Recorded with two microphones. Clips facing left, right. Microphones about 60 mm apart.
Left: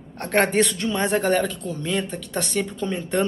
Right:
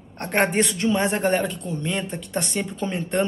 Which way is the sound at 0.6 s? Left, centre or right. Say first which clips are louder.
Right 2 dB; centre.